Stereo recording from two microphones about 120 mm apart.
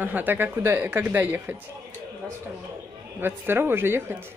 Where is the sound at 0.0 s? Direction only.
15° right (ahead or behind).